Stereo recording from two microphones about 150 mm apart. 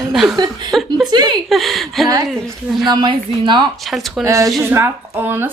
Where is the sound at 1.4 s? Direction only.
Centre (ahead or behind).